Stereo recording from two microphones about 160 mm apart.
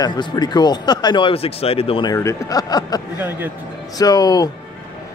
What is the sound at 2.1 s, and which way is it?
Speech, 20° left (ahead or behind).